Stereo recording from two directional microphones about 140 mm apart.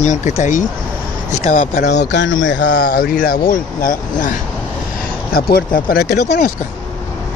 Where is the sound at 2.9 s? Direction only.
90° left; by 4.3 s 70° left (ahead or behind).